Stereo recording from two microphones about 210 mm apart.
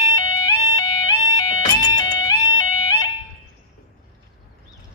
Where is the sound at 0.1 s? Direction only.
20° left (ahead or behind).